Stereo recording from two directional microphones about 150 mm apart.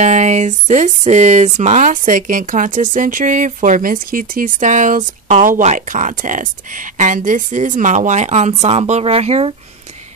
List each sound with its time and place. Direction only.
0.0 s speech: 50° right (ahead or behind)